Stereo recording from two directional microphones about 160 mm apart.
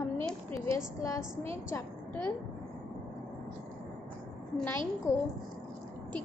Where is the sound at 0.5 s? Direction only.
20° left (ahead or behind).